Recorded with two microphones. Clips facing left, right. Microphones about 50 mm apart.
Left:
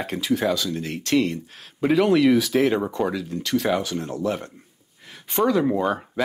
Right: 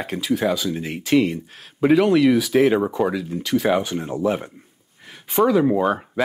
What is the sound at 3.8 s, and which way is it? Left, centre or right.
Speech, centre.